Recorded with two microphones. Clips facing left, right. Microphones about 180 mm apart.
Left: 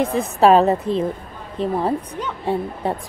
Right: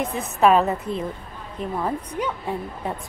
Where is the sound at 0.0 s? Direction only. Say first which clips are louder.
Left 4 dB; 30° left (ahead or behind).